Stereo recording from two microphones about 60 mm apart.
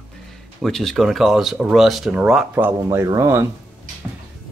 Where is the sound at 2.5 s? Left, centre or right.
Right.